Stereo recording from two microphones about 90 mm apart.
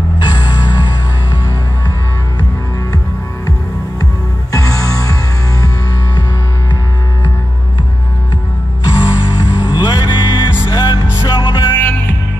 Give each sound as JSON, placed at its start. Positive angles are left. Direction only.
{"t": 0.2, "sound": "music", "side_deg": 55}
{"t": 4.0, "sound": "music", "side_deg": 40}
{"t": 8.8, "sound": "music", "side_deg": 65}
{"t": 11.2, "sound": "music", "side_deg": 60}
{"t": 11.7, "sound": "music", "side_deg": 25}